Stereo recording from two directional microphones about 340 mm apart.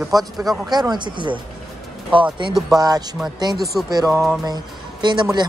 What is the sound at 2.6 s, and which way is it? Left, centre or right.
A man's voice, centre.